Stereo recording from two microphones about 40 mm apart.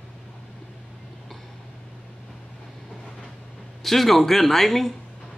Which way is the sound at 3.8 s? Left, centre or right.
Centre.